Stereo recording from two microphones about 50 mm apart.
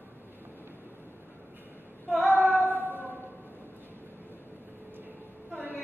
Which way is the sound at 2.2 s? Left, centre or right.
Left.